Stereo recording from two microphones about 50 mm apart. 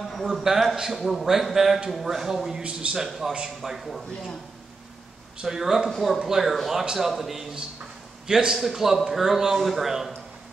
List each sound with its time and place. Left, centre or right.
0.0 s a sound: centre
0.3 s a man's voice: centre
2.6 s a man's voice: right
3.0 s a man's voice: centre
5.4 s a man's voice: centre